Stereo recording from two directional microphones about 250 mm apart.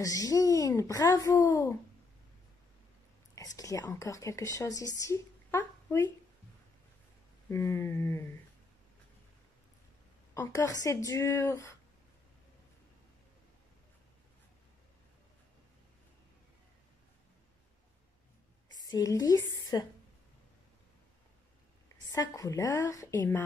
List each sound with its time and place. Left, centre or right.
0.0 s speech: centre
3.5 s speech: centre
7.4 s speech: centre
10.3 s speech: centre
18.9 s a woman's voice: centre
22.1 s speech: centre